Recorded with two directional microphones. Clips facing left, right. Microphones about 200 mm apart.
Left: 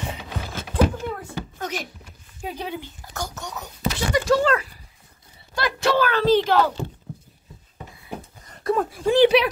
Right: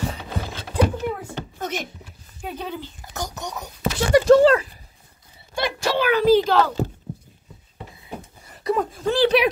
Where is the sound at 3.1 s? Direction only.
15° right (ahead or behind).